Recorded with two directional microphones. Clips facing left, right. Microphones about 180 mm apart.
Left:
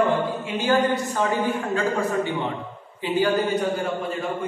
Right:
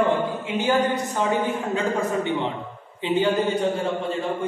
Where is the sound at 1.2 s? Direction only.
20° right (ahead or behind).